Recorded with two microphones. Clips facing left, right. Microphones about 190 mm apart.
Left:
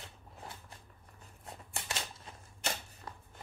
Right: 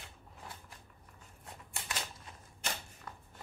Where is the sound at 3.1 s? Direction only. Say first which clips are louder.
Left 2 dB; 30° left (ahead or behind).